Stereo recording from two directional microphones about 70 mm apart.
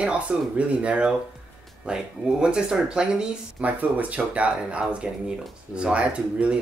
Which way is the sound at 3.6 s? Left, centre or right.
Right.